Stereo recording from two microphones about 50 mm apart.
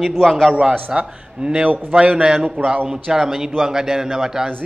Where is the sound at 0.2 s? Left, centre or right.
Centre.